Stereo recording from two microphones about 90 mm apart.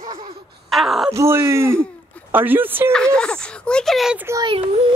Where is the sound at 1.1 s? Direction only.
30° right (ahead or behind).